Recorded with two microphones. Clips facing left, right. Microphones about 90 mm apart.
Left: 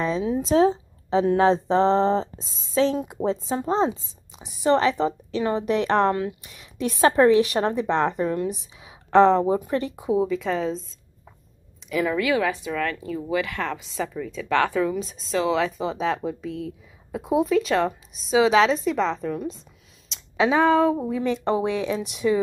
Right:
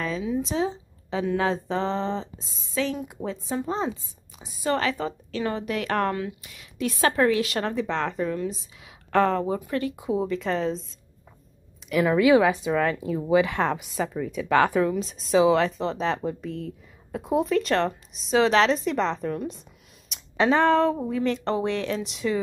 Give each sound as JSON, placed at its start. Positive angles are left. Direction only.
{"t": 0.2, "sound": "a woman's voice", "side_deg": 40}
{"t": 1.1, "sound": "a woman's voice", "side_deg": 35}
{"t": 4.4, "sound": "a woman's voice", "side_deg": 20}
{"t": 10.2, "sound": "speech", "side_deg": 0}
{"t": 11.9, "sound": "speech", "side_deg": -5}
{"t": 12.2, "sound": "a woman's voice", "side_deg": -20}